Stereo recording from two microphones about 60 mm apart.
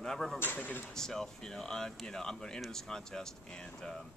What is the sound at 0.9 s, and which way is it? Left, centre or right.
Speech, centre.